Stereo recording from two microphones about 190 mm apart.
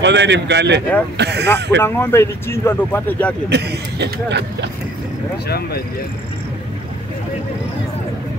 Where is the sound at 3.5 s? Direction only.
60° right (ahead or behind).